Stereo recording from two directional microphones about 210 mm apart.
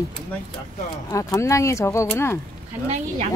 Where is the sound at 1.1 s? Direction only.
15° left (ahead or behind).